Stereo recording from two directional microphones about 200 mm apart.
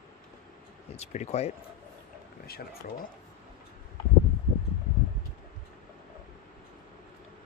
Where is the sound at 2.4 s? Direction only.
50° left (ahead or behind).